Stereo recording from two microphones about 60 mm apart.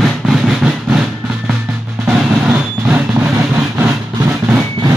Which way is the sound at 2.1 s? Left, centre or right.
Centre.